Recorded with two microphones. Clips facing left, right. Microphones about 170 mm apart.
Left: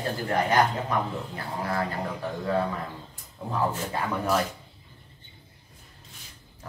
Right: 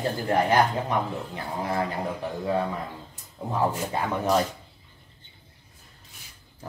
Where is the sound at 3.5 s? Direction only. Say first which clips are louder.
Right 2 dB; 20° right (ahead or behind).